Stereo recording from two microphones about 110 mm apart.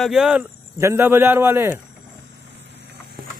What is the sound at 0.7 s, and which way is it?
A man's voice, 25° right (ahead or behind).